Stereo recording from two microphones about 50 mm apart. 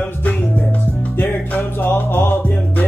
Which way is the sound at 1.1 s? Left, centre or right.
Left.